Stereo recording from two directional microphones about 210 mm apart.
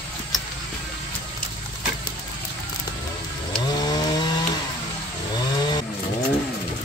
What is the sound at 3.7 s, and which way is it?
Chainsaw, 20° left (ahead or behind).